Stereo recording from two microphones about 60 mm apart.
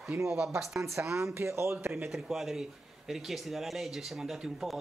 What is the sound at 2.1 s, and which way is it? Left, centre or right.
Speech, centre.